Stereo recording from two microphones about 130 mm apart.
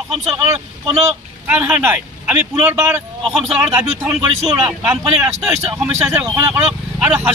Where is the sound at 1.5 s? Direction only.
10° right (ahead or behind).